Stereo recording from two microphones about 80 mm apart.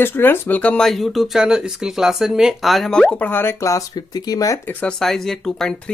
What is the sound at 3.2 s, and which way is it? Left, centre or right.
Speech, left.